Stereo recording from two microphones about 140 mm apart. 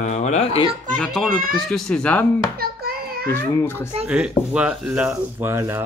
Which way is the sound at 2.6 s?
90° right.